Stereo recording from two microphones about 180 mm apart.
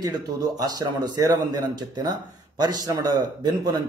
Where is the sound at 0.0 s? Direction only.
20° right (ahead or behind).